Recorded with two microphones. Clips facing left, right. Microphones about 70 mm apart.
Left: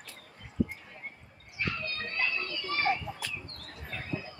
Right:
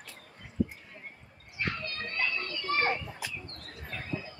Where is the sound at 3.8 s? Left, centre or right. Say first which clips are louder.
Even; centre.